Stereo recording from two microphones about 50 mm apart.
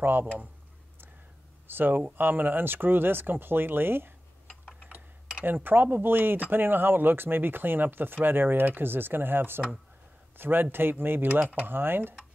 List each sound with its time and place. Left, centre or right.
0.0 s speech: right
1.7 s speech: right
5.4 s speech: right